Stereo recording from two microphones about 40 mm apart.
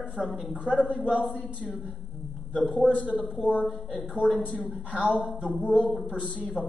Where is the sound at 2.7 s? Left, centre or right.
Right.